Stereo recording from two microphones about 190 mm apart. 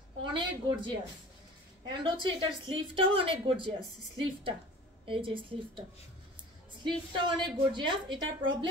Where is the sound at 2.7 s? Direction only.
25° right (ahead or behind).